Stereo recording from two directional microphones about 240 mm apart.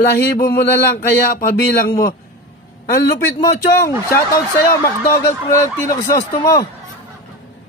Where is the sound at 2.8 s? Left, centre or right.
Left.